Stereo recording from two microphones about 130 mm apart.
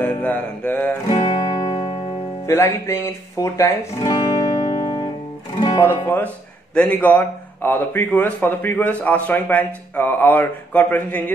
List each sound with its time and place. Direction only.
0.0 s mantra: 10° left (ahead or behind)
1.0 s music: 35° left (ahead or behind)
2.4 s speech: 20° left (ahead or behind)
4.0 s music: 35° left (ahead or behind)
5.8 s speech: 15° left (ahead or behind)